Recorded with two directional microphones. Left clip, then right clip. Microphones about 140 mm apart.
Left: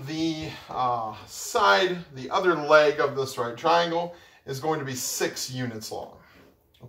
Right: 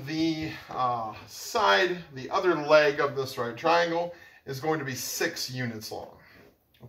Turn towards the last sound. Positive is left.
turn(degrees=-15)  # may be behind; listen again after turning